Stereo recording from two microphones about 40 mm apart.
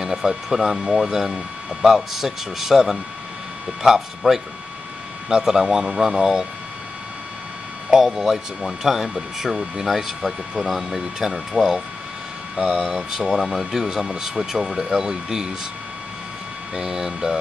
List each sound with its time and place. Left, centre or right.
0.0 s speech: centre
7.9 s speech: centre
10.6 s speech: centre
11.0 s speech: centre
12.5 s speech: right
12.9 s speech: centre
16.7 s speech: centre